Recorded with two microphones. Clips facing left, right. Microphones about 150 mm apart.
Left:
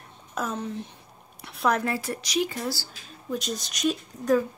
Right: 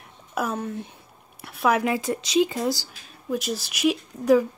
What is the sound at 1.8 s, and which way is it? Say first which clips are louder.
Speech: right 4 dB; 20° right (ahead or behind).